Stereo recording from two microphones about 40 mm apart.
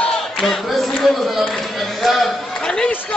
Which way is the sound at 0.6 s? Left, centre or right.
Centre.